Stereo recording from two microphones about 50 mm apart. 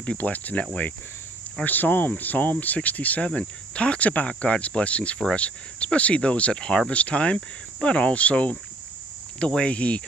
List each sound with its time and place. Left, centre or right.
0.0 s cricket: left
1.6 s speech: left
3.3 s cricket: left